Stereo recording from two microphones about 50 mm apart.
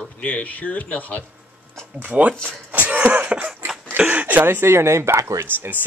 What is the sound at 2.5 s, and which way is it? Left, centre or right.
Cough, right.